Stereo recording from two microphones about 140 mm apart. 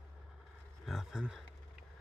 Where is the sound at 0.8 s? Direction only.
5° right (ahead or behind).